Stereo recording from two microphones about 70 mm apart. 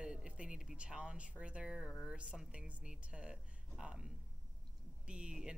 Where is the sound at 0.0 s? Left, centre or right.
Centre.